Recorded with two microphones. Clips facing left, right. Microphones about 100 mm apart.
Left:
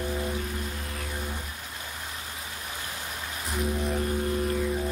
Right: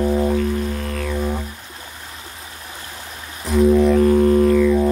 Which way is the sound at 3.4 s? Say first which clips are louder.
Right 16 dB; 80° right.